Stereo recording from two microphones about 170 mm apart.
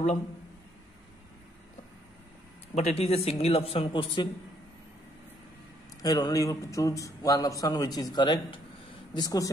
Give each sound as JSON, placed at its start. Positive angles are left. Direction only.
{"t": 2.7, "sound": "speech", "side_deg": 40}
{"t": 6.0, "sound": "a man's voice", "side_deg": 20}